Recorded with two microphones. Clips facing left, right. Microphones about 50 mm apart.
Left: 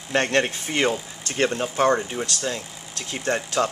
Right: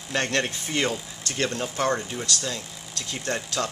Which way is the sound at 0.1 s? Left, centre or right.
Left.